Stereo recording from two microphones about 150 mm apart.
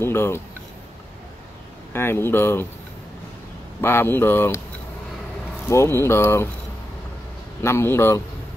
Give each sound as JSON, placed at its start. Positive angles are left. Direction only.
{"t": 0.0, "sound": "speech", "side_deg": 15}
{"t": 1.9, "sound": "speech", "side_deg": 15}
{"t": 3.8, "sound": "speech", "side_deg": 15}
{"t": 5.7, "sound": "speech", "side_deg": 20}
{"t": 7.6, "sound": "speech", "side_deg": 15}